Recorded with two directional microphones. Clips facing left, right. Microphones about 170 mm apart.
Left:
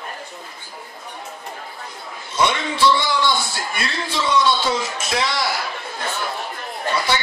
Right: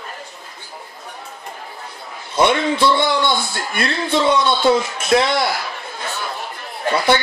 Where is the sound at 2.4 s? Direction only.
55° right (ahead or behind).